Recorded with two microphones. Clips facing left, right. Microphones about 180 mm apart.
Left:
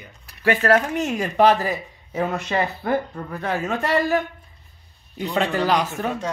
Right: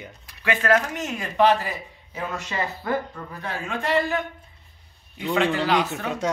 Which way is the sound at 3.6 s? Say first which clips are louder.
Left 1 dB; 40° left (ahead or behind).